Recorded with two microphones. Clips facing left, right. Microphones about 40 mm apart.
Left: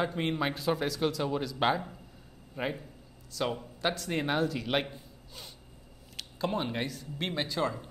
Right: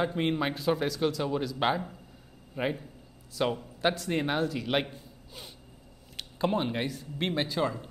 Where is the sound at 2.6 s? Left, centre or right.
Centre.